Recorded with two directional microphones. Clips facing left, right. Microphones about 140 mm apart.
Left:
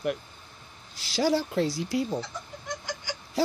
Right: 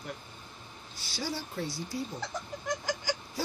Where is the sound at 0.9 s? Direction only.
90° left.